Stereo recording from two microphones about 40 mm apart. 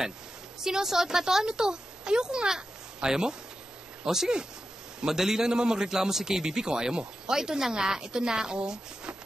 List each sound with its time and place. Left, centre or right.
0.7 s a man's voice: centre